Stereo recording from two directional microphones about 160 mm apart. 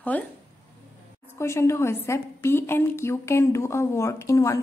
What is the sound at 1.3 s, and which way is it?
A woman's voice, 15° left (ahead or behind).